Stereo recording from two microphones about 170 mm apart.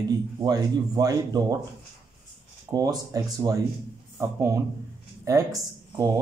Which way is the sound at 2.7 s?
20° right (ahead or behind).